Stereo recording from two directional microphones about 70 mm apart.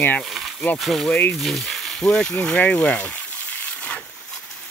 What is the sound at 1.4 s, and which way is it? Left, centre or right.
Frying, centre.